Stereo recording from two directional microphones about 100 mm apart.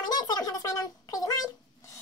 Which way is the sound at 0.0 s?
45° left (ahead or behind).